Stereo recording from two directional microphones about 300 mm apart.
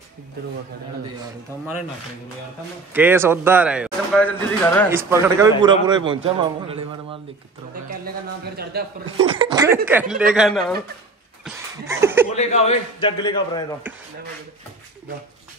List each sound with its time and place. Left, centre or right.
2.9 s speech: centre
4.9 s a man's voice: centre
8.7 s speech: right
9.2 s a man's voice: centre
11.4 s laughter: centre
12.4 s a man's voice: left